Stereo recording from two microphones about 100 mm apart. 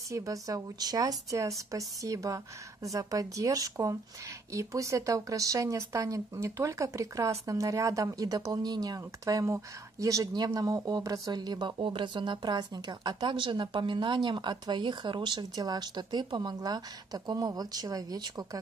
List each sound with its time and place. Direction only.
0.1 s speech: 35° right (ahead or behind)